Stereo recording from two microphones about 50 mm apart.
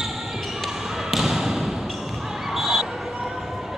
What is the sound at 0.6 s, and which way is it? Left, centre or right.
Basketball bounce, centre.